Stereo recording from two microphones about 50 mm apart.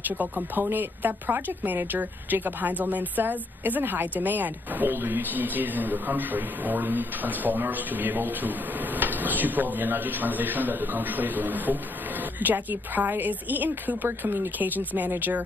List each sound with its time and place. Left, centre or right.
0.2 s speech: right
14.6 s speech: right